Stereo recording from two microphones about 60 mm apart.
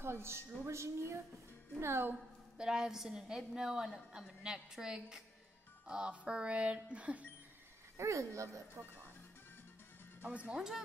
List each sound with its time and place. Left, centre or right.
0.0 s a woman's voice: right
2.5 s a woman's voice: centre
8.0 s speech: right
10.2 s speech: right